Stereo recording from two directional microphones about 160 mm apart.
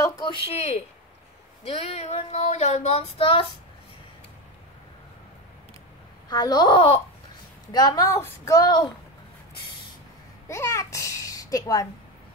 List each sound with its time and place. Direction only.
0.0 s speech: 30° left (ahead or behind)
1.6 s child singing: 40° left (ahead or behind)
6.2 s a woman's voice: 25° left (ahead or behind)
10.5 s a child's voice: 20° left (ahead or behind)